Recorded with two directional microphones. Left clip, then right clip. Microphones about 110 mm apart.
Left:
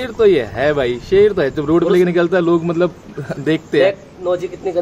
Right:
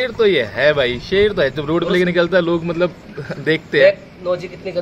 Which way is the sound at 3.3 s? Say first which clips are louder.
Even; 55° left (ahead or behind).